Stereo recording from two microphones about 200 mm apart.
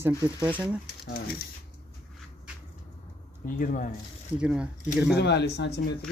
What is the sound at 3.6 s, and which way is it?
Speech, 45° left (ahead or behind).